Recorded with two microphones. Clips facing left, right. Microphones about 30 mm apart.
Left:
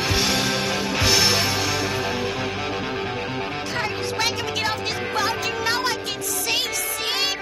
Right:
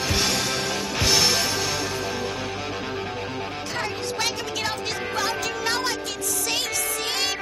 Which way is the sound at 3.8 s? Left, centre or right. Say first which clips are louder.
Left 2 dB; centre.